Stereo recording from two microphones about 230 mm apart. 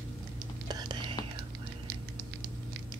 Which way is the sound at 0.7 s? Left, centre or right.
Centre.